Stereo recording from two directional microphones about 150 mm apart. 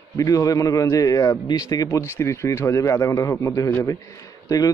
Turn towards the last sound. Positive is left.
turn(degrees=20)  # may be behind; listen again after turning